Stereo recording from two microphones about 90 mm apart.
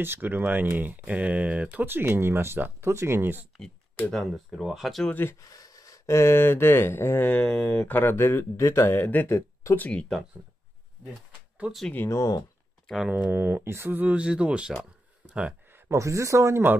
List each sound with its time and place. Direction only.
0.0 s speech: 25° right (ahead or behind)
4.1 s speech: centre (ahead or behind)
5.4 s speech: 40° left (ahead or behind); by 7.4 s 20° left (ahead or behind)
7.4 s speech: 10° left (ahead or behind)
7.9 s speech: 25° left (ahead or behind)
9.0 s speech: 20° left (ahead or behind)
11.6 s speech: 15° right (ahead or behind)
12.1 s speech: 40° left (ahead or behind)
13.0 s speech: 15° right (ahead or behind)
13.3 s speech: 25° right (ahead or behind)
15.2 s a sound: 10° right (ahead or behind)
15.9 s speech: 35° right (ahead or behind)